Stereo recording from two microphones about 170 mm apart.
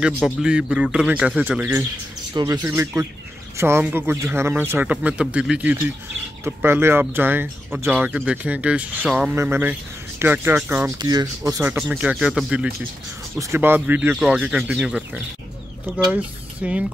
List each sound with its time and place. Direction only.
0.0 s a man's voice: 5° right (ahead or behind)
2.3 s speech: 20° right (ahead or behind)
11.0 s speech: 25° right (ahead or behind)
11.9 s a man's voice: 5° right (ahead or behind)